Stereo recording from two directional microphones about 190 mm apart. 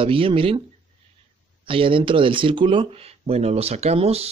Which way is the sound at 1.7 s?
25° right (ahead or behind).